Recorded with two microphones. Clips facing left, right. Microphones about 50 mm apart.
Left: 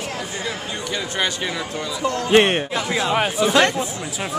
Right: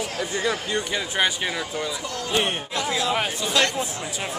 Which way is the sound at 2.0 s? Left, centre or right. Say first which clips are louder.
Left 8 dB; left.